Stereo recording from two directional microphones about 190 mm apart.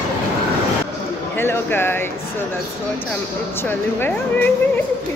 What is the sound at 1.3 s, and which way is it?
Speech, 10° left (ahead or behind).